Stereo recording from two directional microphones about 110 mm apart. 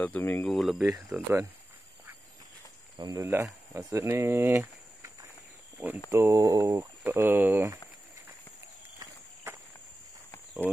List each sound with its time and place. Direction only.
0.0 s speech: 15° left (ahead or behind)
0.5 s speech: centre (ahead or behind)
1.1 s speech: 20° right (ahead or behind)
3.0 s speech: 35° right (ahead or behind); by 7.6 s 20° right (ahead or behind)
9.0 s walk: 25° right (ahead or behind)